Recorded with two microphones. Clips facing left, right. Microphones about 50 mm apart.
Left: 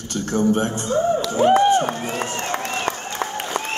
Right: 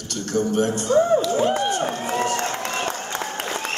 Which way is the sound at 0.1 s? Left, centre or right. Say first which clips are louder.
Left 3 dB; left.